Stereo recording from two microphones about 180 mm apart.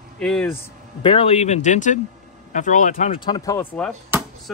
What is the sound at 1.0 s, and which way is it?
Speech, 30° left (ahead or behind).